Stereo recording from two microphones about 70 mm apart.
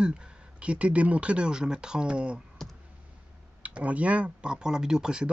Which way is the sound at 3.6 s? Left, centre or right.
Centre.